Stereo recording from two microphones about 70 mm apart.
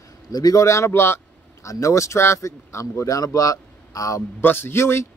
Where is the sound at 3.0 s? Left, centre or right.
Left.